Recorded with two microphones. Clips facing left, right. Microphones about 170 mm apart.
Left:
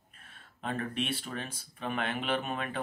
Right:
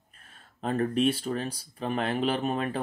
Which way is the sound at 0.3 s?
40° right (ahead or behind).